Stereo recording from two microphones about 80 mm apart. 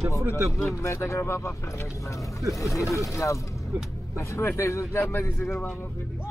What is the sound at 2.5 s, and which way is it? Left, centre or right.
A man's voice, left.